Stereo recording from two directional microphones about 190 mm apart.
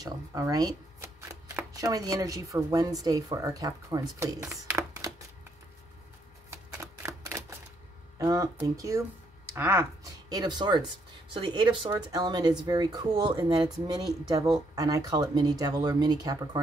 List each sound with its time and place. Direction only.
0.0 s speech: 20° right (ahead or behind)
4.7 s a sound: 15° right (ahead or behind)
6.5 s typewriter: 15° right (ahead or behind)
8.2 s speech: 15° right (ahead or behind)